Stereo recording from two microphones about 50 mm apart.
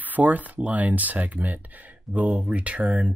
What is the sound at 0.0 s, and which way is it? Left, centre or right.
Speech, right.